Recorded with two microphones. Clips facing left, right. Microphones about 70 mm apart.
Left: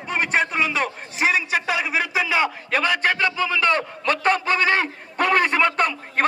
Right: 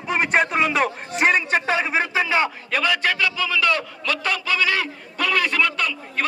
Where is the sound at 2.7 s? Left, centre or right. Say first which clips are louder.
Left 1 dB; left.